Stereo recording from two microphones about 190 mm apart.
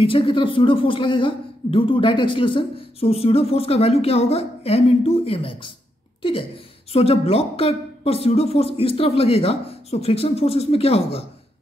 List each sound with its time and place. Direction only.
0.0 s speech: 30° left (ahead or behind)
6.9 s speech: 30° left (ahead or behind)